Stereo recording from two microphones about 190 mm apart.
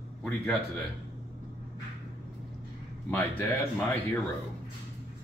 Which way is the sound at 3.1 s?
10° left (ahead or behind).